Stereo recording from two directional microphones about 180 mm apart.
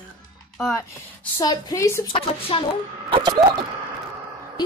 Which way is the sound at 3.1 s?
25° right (ahead or behind).